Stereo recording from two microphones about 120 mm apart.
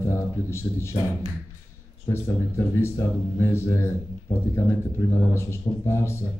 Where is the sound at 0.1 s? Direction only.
20° left (ahead or behind).